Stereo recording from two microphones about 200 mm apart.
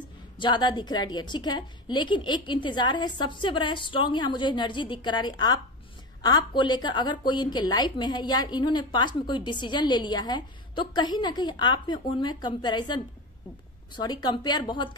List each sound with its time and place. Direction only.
0.4 s a woman's voice: 25° left (ahead or behind)